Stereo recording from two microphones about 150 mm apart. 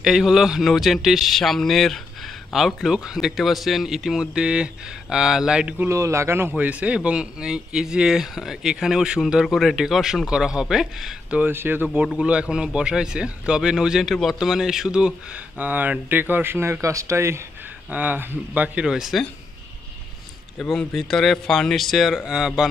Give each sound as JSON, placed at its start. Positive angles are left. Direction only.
{"t": 0.0, "sound": "speech", "side_deg": -5}
{"t": 5.9, "sound": "a man's voice", "side_deg": -20}
{"t": 20.5, "sound": "speech", "side_deg": 0}